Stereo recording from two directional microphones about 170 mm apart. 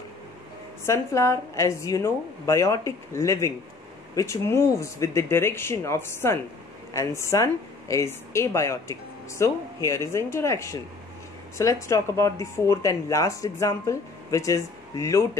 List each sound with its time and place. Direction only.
0.8 s speech: 15° left (ahead or behind)